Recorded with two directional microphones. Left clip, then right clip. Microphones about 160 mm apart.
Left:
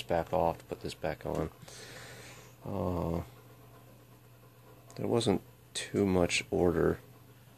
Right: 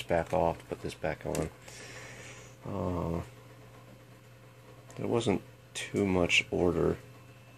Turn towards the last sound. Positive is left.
turn(degrees=20)  # may be behind; listen again after turning